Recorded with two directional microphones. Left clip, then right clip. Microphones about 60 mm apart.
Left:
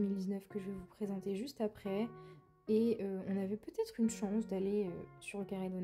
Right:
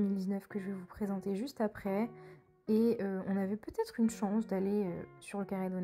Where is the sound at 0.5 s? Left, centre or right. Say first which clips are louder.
Right 3 dB; right.